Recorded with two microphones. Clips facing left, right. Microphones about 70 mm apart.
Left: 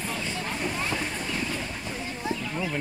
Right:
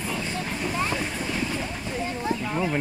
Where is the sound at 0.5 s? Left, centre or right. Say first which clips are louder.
Right 3 dB; centre.